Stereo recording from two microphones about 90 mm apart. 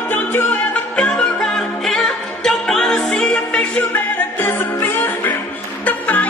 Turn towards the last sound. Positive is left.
turn(degrees=15)  # may be behind; listen again after turning